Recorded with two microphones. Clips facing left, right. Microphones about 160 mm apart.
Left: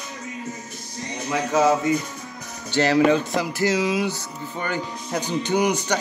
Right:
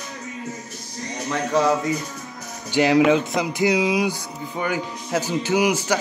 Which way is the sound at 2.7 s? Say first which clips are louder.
Right 2 dB; 15° right (ahead or behind).